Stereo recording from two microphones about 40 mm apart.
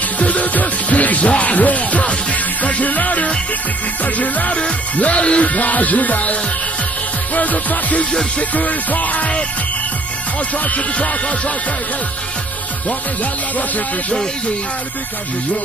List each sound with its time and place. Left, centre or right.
0.2 s music: left
7.3 s music: left
10.6 s music: left